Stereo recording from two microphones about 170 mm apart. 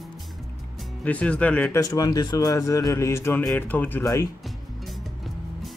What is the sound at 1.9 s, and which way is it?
Speech, 20° left (ahead or behind).